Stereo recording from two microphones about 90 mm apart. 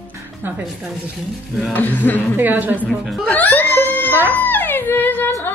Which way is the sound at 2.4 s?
20° right (ahead or behind).